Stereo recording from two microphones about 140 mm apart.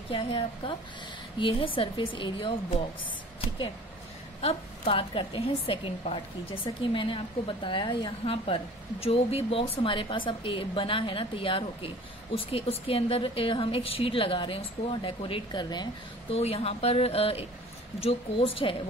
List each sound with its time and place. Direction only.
0.1 s a woman's voice: 40° left (ahead or behind)
1.8 s a woman's voice: 35° left (ahead or behind)
16.3 s a woman's voice: 45° left (ahead or behind)